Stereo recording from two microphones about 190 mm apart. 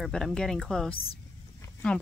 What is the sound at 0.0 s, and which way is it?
Speech, 5° left (ahead or behind).